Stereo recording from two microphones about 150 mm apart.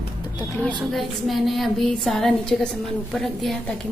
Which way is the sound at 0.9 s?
Centre (ahead or behind).